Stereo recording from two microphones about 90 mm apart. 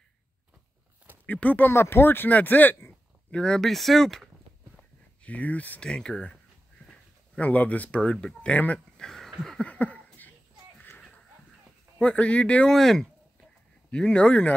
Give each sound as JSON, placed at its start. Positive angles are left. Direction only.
{"t": 1.2, "sound": "speech", "side_deg": 15}
{"t": 1.7, "sound": "speech", "side_deg": 30}
{"t": 3.3, "sound": "speech", "side_deg": 10}
{"t": 5.2, "sound": "speech", "side_deg": 15}
{"t": 9.4, "sound": "a sound", "side_deg": 10}
{"t": 12.0, "sound": "speech", "side_deg": 10}
{"t": 12.7, "sound": "speech", "side_deg": 5}